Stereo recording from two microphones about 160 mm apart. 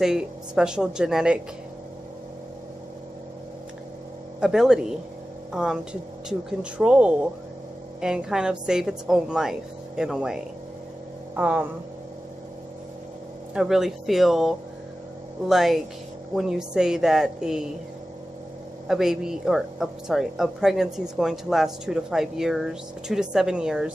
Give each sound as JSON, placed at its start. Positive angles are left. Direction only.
{"t": 0.0, "sound": "speech", "side_deg": -5}
{"t": 4.4, "sound": "a woman's voice", "side_deg": -5}
{"t": 13.6, "sound": "speech", "side_deg": 0}
{"t": 18.9, "sound": "speech", "side_deg": -5}